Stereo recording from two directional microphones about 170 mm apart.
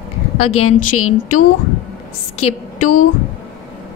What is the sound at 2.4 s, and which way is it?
Speech, 50° left (ahead or behind).